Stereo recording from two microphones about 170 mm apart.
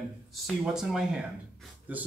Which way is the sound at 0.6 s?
5° right (ahead or behind).